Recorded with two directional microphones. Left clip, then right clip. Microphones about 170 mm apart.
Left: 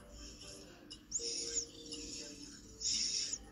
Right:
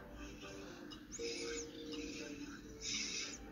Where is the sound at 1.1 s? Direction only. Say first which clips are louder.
Left 3 dB; 55° left (ahead or behind).